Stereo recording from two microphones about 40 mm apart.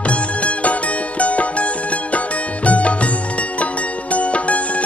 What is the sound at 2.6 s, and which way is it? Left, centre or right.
Music, left.